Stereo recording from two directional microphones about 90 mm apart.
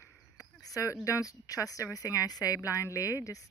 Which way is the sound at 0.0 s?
40° left (ahead or behind).